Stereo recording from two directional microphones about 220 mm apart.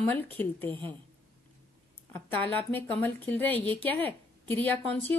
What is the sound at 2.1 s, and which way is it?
A woman's voice, 10° left (ahead or behind).